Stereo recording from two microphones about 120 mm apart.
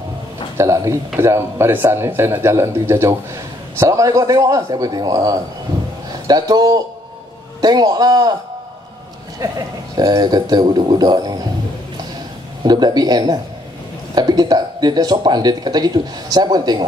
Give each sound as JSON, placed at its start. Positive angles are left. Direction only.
{"t": 0.6, "sound": "speech", "side_deg": -25}
{"t": 9.4, "sound": "speech", "side_deg": -30}
{"t": 12.6, "sound": "speech", "side_deg": -35}